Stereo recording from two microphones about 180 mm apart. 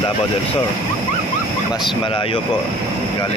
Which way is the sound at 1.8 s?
30° left (ahead or behind).